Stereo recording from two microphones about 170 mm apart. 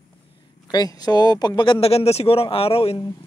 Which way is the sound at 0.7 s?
25° left (ahead or behind).